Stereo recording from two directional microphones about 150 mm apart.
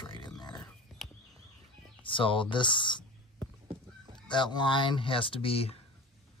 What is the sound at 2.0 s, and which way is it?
Speech, 35° left (ahead or behind).